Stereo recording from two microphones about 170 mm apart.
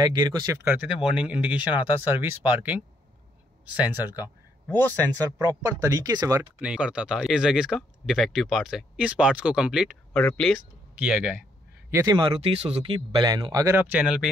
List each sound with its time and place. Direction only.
0.0 s speech: 25° right (ahead or behind); by 2.8 s 10° right (ahead or behind)
3.9 s speech: 10° right (ahead or behind)
4.6 s speech: 10° left (ahead or behind)
5.1 s speech: 20° right (ahead or behind)
6.6 s speech: 5° right (ahead or behind)
12.0 s speech: 25° right (ahead or behind); by 14.3 s 5° right (ahead or behind)